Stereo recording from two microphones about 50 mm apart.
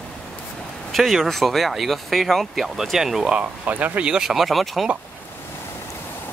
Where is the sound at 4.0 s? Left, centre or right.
Centre.